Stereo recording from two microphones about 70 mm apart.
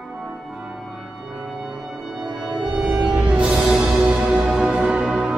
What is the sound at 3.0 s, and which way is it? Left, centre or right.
Music, centre.